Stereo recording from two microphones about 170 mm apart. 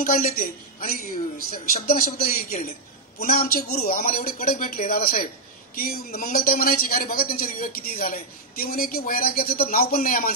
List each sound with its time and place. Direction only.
0.0 s a man's voice: 55° left (ahead or behind)